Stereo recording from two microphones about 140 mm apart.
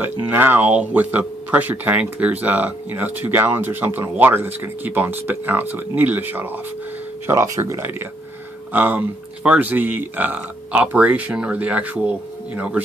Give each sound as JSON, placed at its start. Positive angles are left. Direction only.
{"t": 0.0, "sound": "speech", "side_deg": -15}